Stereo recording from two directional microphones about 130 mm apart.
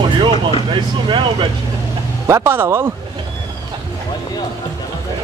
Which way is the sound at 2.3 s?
20° right (ahead or behind).